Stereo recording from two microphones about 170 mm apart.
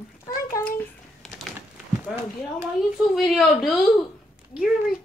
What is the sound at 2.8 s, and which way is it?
A child's voice, centre (ahead or behind).